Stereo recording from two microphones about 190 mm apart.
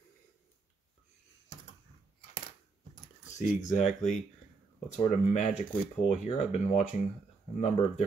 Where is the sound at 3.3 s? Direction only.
40° left (ahead or behind).